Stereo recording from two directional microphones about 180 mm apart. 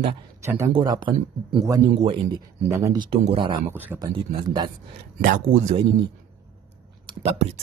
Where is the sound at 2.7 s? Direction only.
15° right (ahead or behind).